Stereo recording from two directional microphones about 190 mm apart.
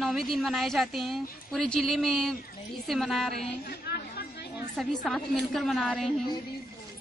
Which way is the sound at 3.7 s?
55° left (ahead or behind).